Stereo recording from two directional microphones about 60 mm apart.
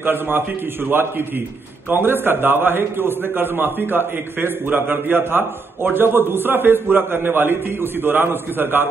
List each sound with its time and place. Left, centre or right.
0.0 s a man's voice: right